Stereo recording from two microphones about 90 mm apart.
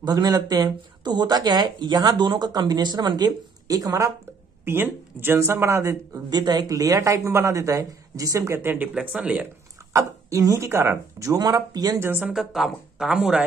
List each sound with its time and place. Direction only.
0.0 s speech: 50° right (ahead or behind)
4.6 s speech: 25° right (ahead or behind)
6.3 s speech: 50° right (ahead or behind)
8.6 s speech: 20° right (ahead or behind)
9.9 s speech: 35° right (ahead or behind)
12.0 s speech: 25° right (ahead or behind)
12.3 s speech: 5° right (ahead or behind)